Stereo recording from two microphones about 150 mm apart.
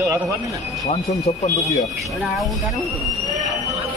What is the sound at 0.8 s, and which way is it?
Speech, 50° left (ahead or behind).